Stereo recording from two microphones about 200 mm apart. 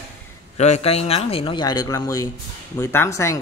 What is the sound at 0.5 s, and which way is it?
A man's voice, 35° left (ahead or behind).